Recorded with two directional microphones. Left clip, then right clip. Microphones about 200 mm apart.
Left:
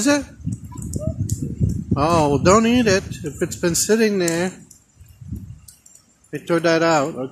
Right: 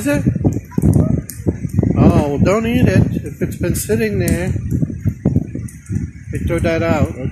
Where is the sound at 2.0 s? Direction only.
15° left (ahead or behind).